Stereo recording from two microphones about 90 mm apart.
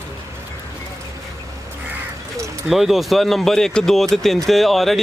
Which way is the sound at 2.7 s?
5° right (ahead or behind).